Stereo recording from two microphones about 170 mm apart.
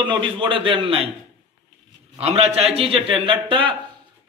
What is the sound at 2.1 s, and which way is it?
A man's voice, 35° right (ahead or behind).